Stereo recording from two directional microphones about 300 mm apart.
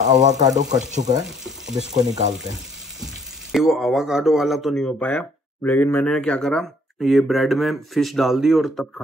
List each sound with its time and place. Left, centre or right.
0.0 s speech: right
0.3 s speech: centre
0.6 s speech: right
3.5 s speech: centre